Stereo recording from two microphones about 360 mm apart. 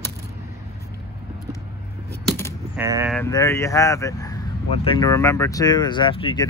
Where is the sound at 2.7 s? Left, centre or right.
Centre.